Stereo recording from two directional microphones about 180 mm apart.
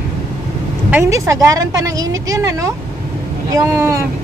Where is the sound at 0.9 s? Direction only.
15° right (ahead or behind).